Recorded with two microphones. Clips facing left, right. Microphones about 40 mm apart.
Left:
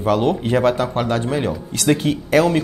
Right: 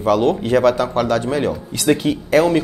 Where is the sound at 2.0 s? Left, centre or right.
Right.